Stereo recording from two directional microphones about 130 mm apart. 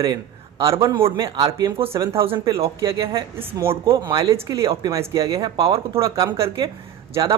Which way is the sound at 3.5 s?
20° right (ahead or behind).